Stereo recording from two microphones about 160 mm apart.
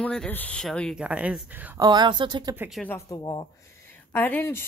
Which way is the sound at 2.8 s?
15° left (ahead or behind).